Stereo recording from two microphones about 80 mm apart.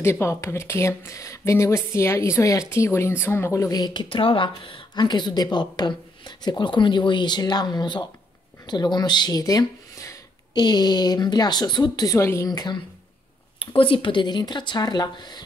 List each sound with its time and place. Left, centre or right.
0.0 s speech: left
3.7 s speech: left
6.6 s a woman's voice: left
9.4 s speech: left
10.5 s a woman's voice: left
12.2 s speech: left
12.4 s speech: left
13.7 s speech: left